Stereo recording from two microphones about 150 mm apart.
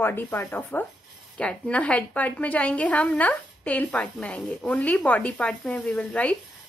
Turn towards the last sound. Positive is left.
turn(degrees=5)  # may be behind; listen again after turning